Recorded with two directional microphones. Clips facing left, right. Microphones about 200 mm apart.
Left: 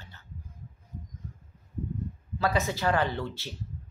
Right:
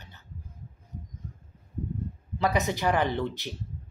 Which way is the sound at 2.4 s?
20° right (ahead or behind).